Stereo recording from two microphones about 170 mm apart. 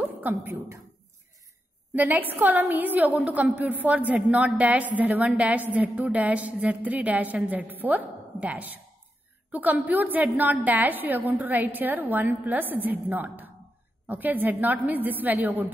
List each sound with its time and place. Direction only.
0.0 s speech: 10° right (ahead or behind)
2.0 s a woman's voice: 10° right (ahead or behind)